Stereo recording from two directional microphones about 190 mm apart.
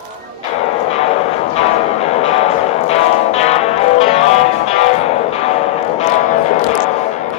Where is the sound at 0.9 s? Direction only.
35° left (ahead or behind).